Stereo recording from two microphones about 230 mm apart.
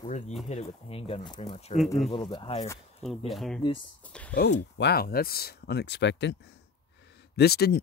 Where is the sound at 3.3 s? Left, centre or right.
Centre.